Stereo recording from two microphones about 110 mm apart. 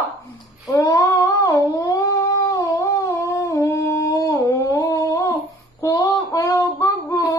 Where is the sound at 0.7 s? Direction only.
30° left (ahead or behind).